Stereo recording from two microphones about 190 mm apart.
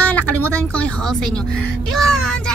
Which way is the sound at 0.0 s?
10° left (ahead or behind).